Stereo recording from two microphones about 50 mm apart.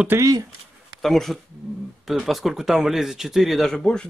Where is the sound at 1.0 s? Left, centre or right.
Centre.